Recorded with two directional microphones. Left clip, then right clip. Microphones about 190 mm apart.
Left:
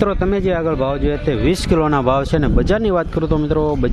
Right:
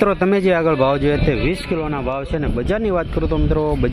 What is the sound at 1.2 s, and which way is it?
Speech, 20° left (ahead or behind).